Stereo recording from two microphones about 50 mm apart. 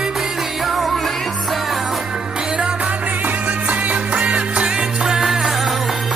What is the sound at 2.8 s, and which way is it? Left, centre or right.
Music, right.